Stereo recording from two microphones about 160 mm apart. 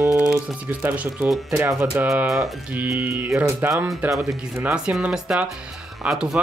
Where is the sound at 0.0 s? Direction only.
15° right (ahead or behind).